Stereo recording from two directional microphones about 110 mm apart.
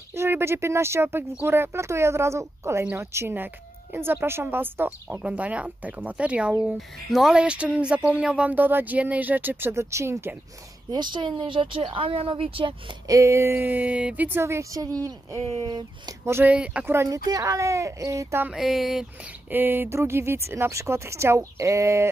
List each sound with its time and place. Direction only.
0.1 s speech: 25° right (ahead or behind)
10.9 s speech: 40° right (ahead or behind)
13.1 s speech: 25° right (ahead or behind)
16.3 s speech: 20° right (ahead or behind)
16.5 s speech: 10° right (ahead or behind)
16.8 s speech: 20° right (ahead or behind)
18.5 s speech: centre (ahead or behind)
19.5 s speech: 20° right (ahead or behind)